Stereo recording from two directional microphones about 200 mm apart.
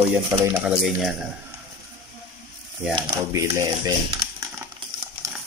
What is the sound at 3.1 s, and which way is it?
Speech, 15° right (ahead or behind).